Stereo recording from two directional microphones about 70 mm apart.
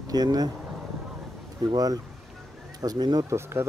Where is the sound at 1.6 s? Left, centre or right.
Right.